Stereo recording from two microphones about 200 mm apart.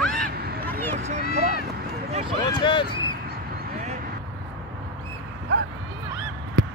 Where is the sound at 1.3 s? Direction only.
35° right (ahead or behind).